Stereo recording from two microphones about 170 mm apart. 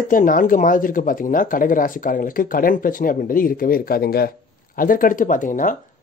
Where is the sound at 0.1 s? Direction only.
50° left (ahead or behind).